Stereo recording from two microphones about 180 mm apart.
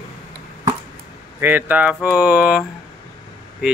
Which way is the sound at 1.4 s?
10° right (ahead or behind).